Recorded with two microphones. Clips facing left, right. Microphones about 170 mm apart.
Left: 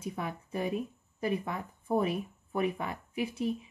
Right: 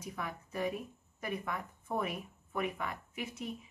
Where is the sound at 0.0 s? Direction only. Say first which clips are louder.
Left 5 dB; 30° left (ahead or behind).